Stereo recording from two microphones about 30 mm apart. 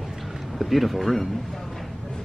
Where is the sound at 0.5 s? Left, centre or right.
Centre.